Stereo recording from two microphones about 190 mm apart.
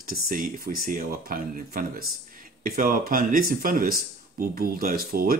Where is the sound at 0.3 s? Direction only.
50° right (ahead or behind).